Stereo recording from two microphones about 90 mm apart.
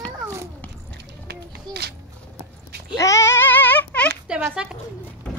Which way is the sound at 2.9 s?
35° left (ahead or behind).